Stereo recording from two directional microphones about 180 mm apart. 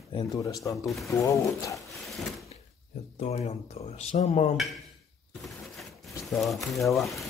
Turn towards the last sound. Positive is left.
turn(degrees=0)  # may be behind; listen again after turning